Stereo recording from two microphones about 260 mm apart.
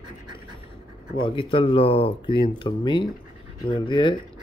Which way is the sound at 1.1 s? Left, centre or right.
Centre.